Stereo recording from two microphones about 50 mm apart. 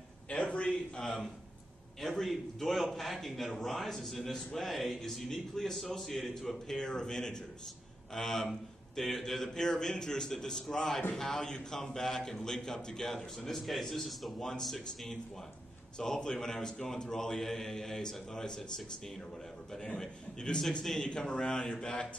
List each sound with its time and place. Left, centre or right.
0.3 s a sound: left
1.0 s a man's voice: centre
6.8 s a man's voice: centre